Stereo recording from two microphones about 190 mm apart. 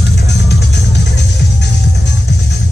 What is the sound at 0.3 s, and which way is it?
Music, 65° left (ahead or behind).